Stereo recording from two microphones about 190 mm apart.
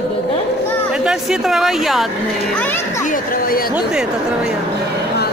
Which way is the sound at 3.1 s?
50° left (ahead or behind).